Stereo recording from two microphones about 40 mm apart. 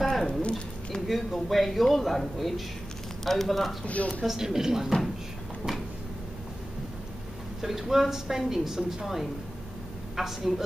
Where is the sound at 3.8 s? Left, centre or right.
Left.